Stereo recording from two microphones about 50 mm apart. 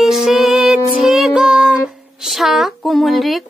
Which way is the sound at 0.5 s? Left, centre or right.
Centre.